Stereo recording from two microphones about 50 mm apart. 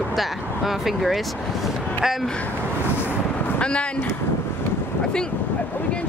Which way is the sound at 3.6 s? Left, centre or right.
Left.